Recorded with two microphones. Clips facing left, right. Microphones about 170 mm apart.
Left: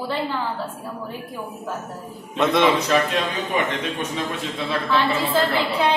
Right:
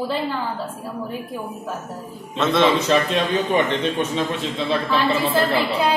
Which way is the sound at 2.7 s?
25° right (ahead or behind).